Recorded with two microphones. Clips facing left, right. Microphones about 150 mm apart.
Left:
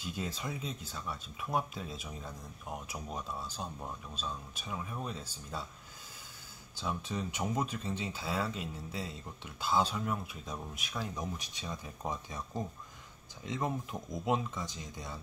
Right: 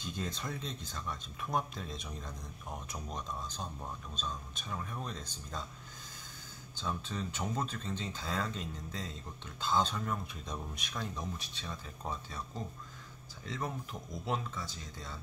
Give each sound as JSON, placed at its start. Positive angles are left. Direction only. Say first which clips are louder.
{"t": 0.0, "sound": "speech", "louder": "left 1 dB", "side_deg": 5}
{"t": 6.8, "sound": "speech", "louder": "left 2 dB", "side_deg": 10}